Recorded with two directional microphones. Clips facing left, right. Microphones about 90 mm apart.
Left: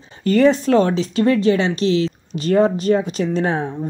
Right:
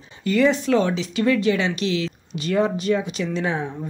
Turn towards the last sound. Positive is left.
turn(degrees=40)  # may be behind; listen again after turning